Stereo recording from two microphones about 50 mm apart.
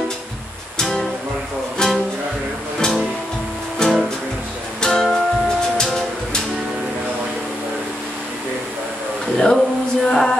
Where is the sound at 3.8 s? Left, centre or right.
Centre.